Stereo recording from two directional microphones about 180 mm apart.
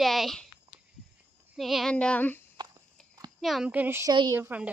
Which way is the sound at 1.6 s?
Centre (ahead or behind).